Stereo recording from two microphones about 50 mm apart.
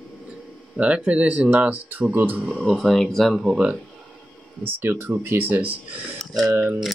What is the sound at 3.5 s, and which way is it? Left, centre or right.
Speech, right.